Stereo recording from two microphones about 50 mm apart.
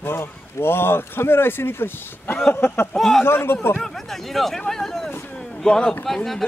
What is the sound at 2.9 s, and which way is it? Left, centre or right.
Speech, centre.